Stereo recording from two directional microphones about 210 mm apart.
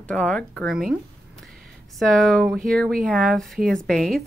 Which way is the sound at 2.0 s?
Centre (ahead or behind).